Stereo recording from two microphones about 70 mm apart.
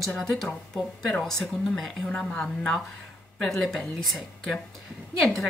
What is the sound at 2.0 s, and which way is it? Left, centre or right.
A woman's voice, centre.